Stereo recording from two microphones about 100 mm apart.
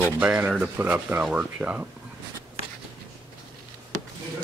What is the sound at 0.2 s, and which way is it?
Speech, 15° right (ahead or behind).